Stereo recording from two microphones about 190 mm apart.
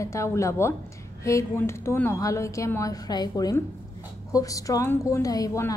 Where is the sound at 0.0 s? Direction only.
15° left (ahead or behind).